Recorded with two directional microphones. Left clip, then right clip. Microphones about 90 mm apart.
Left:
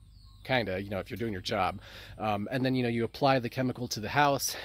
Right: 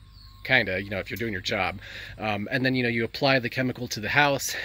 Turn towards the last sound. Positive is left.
turn(degrees=25)  # may be behind; listen again after turning